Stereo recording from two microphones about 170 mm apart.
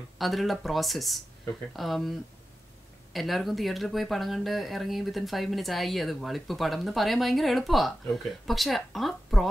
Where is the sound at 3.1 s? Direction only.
Centre (ahead or behind).